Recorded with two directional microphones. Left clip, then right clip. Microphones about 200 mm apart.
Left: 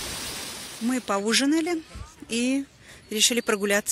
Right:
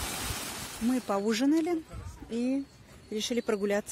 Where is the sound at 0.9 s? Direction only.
5° left (ahead or behind).